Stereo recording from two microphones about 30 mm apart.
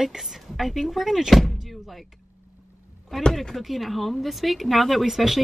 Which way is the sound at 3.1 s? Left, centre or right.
Centre.